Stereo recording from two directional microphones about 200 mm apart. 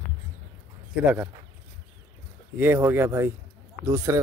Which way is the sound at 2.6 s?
10° right (ahead or behind).